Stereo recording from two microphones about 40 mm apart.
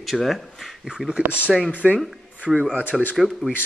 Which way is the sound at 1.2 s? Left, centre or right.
Right.